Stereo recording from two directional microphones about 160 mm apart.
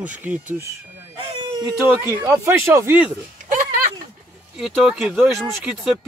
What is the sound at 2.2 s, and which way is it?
Speech, 15° right (ahead or behind).